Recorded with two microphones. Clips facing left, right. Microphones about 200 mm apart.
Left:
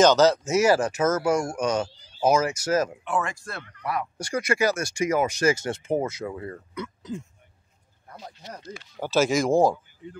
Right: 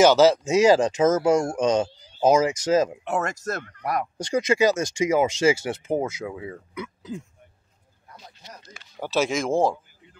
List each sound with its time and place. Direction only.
0.0 s speech: 10° right (ahead or behind)
3.1 s speech: 40° right (ahead or behind)
4.2 s speech: 20° right (ahead or behind)
5.9 s speech: 5° right (ahead or behind)
9.0 s speech: centre (ahead or behind)